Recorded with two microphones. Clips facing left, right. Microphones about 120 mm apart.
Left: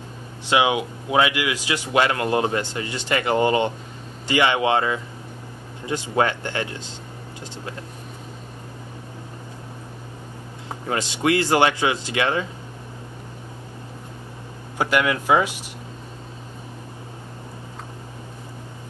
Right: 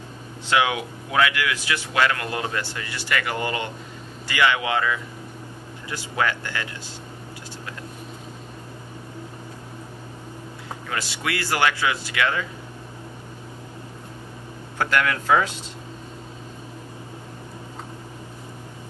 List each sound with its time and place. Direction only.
0.5 s speech: 20° left (ahead or behind)
10.9 s speech: 25° left (ahead or behind)
14.8 s speech: 15° left (ahead or behind)